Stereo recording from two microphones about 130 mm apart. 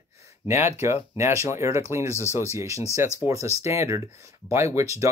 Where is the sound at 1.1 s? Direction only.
20° right (ahead or behind).